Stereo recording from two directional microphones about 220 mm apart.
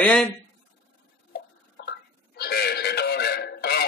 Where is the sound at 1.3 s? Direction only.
45° left (ahead or behind).